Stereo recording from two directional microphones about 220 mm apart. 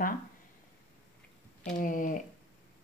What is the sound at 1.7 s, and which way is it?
Speech, 35° left (ahead or behind).